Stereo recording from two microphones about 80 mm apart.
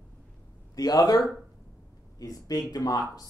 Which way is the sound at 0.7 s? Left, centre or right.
Left.